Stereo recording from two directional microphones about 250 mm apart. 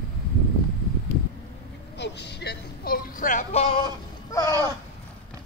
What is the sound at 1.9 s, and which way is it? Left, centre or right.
Speech, left.